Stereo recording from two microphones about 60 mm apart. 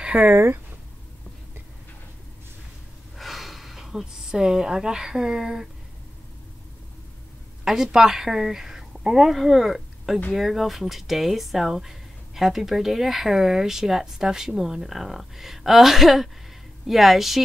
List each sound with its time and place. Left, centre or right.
0.1 s speech: centre
3.2 s speech: centre
7.6 s a woman's voice: centre